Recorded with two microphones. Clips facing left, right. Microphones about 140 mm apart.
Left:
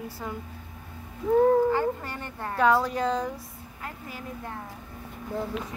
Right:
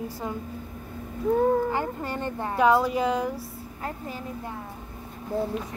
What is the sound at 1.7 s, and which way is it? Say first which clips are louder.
Speech: left 2 dB; 20° right (ahead or behind).